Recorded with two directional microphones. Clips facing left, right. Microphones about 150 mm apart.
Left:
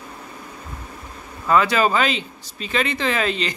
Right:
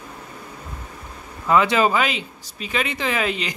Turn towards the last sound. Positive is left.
turn(degrees=-10)  # may be behind; listen again after turning